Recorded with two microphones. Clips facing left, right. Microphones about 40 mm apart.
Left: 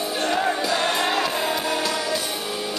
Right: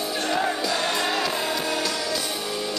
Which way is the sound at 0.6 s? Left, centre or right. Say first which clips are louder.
Left 2 dB; left.